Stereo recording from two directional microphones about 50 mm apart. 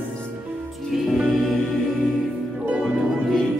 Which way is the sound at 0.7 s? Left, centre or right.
Centre.